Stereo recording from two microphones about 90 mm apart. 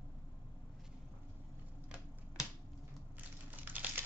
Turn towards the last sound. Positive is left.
turn(degrees=-20)  # may be behind; listen again after turning